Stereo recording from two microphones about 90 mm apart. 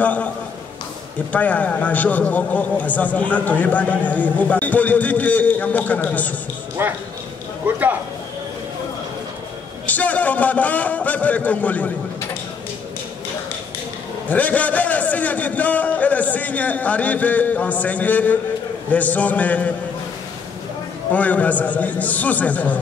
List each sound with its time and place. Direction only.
0.0 s a man's voice: 15° left (ahead or behind)
1.3 s a man's voice: 15° left (ahead or behind)
6.8 s speech: 25° right (ahead or behind)
9.8 s a man's voice: 15° left (ahead or behind)
14.3 s a man's voice: 15° left (ahead or behind)
21.1 s a man's voice: 15° left (ahead or behind)